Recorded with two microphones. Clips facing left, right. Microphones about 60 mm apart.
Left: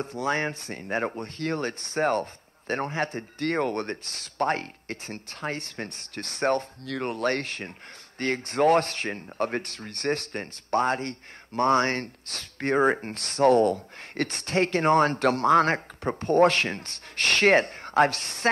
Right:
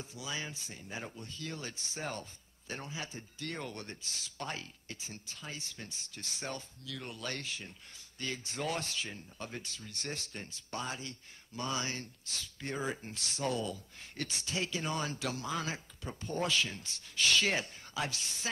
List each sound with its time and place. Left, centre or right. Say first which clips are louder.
0.0 s speech: left 14 dB; left